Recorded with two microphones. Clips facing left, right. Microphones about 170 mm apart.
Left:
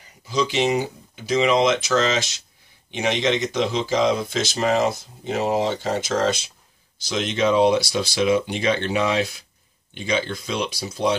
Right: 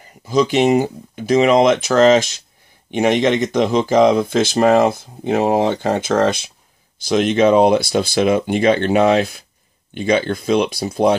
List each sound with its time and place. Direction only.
0.3 s speech: 50° right (ahead or behind)